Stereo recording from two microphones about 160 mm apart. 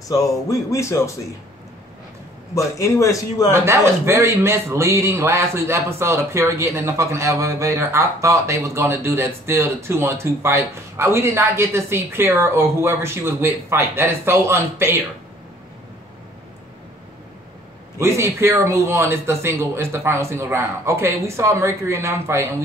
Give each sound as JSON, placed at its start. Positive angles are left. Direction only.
{"t": 0.1, "sound": "speech", "side_deg": 20}
{"t": 2.5, "sound": "speech", "side_deg": 20}
{"t": 3.5, "sound": "a man's voice", "side_deg": -15}
{"t": 17.9, "sound": "a man's voice", "side_deg": -15}